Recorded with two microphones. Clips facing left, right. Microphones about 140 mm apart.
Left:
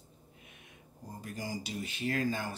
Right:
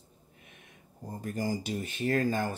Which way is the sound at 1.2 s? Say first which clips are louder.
Right 7 dB; 45° right (ahead or behind).